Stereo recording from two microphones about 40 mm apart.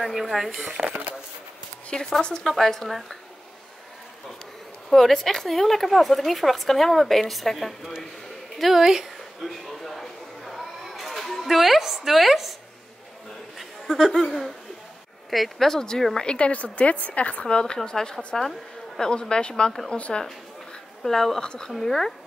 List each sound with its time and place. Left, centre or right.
0.0 s speech: centre
0.8 s speech: right
1.9 s speech: centre
2.4 s speech: centre
4.8 s speech: centre
9.4 s a sound: centre
11.4 s speech: centre
13.8 s speech: centre
15.2 s speech: centre
15.7 s a woman's voice: centre
21.0 s a woman's voice: centre